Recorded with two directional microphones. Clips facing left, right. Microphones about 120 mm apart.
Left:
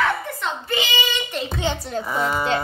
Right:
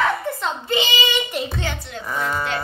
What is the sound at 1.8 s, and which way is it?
Speech, 40° left (ahead or behind).